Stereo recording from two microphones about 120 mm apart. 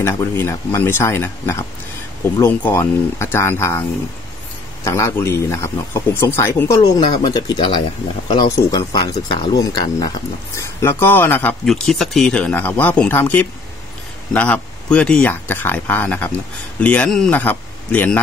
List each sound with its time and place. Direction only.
0.0 s speech: 25° left (ahead or behind)
4.8 s speech: 25° left (ahead or behind)
6.8 s speech: 35° left (ahead or behind)
8.7 s speech: 30° left (ahead or behind); by 11.5 s 15° left (ahead or behind)
11.6 s speech: centre (ahead or behind)